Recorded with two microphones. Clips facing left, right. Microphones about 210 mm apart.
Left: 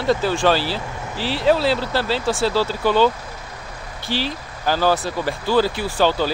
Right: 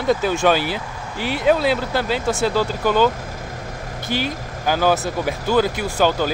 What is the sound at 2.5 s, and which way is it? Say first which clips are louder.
Speech: left 1 dB; 10° right (ahead or behind).